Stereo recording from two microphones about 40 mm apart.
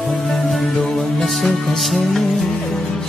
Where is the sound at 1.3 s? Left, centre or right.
Centre.